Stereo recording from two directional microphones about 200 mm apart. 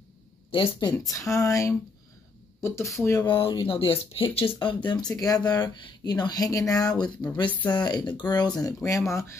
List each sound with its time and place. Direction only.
0.5 s speech: 25° left (ahead or behind)
1.2 s a sound: centre (ahead or behind)
1.5 s speech: 15° left (ahead or behind)
3.3 s speech: 25° left (ahead or behind)